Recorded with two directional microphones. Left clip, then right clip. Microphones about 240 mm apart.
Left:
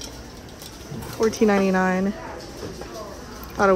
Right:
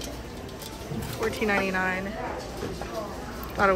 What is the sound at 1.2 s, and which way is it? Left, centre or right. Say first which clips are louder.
Speech: left 6 dB; centre.